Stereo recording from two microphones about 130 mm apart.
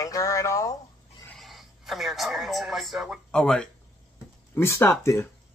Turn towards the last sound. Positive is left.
turn(degrees=20)  # may be behind; listen again after turning